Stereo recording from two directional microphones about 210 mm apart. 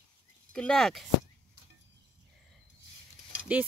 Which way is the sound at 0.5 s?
5° left (ahead or behind).